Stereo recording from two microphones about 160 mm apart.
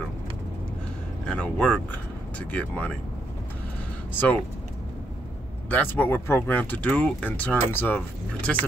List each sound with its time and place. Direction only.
1.2 s speech: 5° left (ahead or behind)
4.1 s speech: 10° left (ahead or behind)
5.7 s speech: 10° left (ahead or behind)